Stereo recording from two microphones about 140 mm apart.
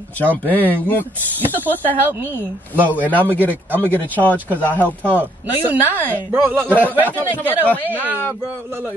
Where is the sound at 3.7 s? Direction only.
15° right (ahead or behind).